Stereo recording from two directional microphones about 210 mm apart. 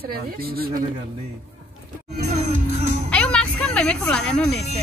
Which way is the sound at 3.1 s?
5° left (ahead or behind).